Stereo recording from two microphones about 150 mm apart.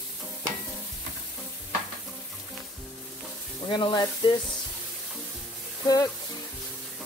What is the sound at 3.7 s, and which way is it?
Sizzle, 30° left (ahead or behind).